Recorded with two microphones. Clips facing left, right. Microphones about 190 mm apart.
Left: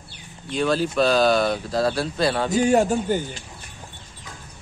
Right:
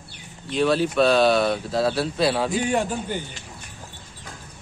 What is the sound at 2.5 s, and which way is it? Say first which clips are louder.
Speech: left 5 dB; 40° left (ahead or behind).